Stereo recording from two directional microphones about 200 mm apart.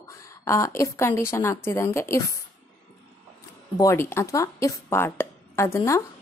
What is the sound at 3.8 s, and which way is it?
A woman's voice, 15° left (ahead or behind).